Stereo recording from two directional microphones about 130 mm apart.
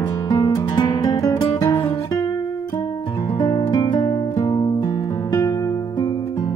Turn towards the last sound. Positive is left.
turn(degrees=25)  # may be behind; listen again after turning